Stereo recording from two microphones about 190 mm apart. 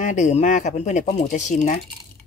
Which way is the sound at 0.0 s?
40° left (ahead or behind).